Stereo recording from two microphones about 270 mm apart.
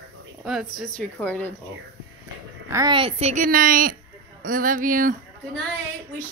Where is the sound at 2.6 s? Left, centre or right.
Centre; by 5.1 s right.